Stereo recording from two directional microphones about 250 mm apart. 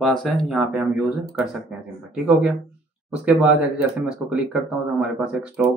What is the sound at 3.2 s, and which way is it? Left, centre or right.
Speech, centre.